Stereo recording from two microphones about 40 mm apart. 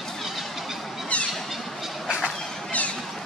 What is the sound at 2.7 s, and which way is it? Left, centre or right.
Vehicle, left.